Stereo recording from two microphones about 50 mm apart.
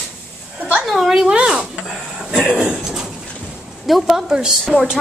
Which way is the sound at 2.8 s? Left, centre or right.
Centre.